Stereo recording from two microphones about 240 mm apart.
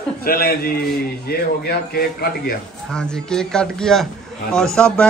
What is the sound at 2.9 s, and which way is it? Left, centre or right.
A man's voice, centre.